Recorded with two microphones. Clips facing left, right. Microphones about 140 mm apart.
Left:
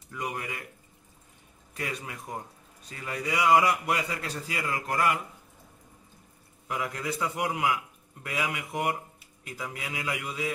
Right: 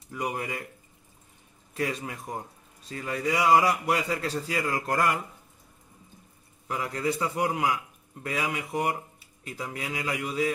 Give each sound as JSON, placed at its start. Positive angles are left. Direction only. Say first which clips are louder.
{"t": 0.1, "sound": "a man's voice", "louder": "right 3 dB", "side_deg": -30}
{"t": 1.8, "sound": "a man's voice", "louder": "right 5 dB", "side_deg": -30}
{"t": 6.7, "sound": "a man's voice", "louder": "right 3 dB", "side_deg": -30}